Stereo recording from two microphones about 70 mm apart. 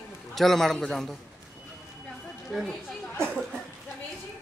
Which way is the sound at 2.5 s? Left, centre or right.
Centre.